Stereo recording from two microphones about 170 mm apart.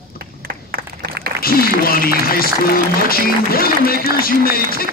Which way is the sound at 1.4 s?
60° left (ahead or behind).